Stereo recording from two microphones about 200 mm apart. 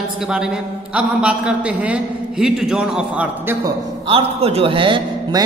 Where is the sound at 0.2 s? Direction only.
5° right (ahead or behind).